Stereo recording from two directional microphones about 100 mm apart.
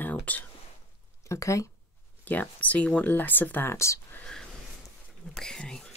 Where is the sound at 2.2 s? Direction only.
15° left (ahead or behind).